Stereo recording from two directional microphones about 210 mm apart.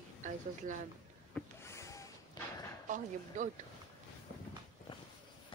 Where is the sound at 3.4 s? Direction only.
35° right (ahead or behind).